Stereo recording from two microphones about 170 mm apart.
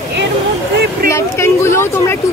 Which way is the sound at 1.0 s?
15° left (ahead or behind).